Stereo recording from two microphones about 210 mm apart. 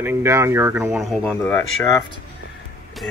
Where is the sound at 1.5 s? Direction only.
10° left (ahead or behind).